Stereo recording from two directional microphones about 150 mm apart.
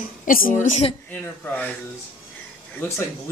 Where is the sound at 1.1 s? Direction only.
10° left (ahead or behind).